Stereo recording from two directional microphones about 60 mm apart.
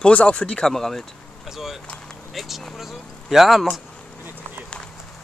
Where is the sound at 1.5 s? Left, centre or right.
Centre.